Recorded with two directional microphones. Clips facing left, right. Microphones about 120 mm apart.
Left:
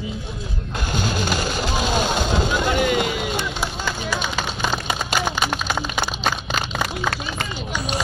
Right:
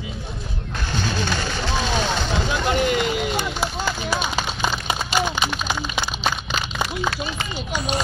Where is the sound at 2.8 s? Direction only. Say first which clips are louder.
Even; 50° left (ahead or behind).